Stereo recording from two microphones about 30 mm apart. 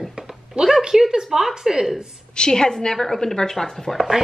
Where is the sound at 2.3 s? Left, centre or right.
Left.